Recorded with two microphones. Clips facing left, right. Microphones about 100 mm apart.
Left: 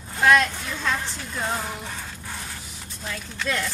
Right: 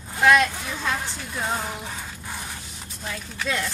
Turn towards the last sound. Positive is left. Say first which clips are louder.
# even
turn(degrees=-5)  # may be behind; listen again after turning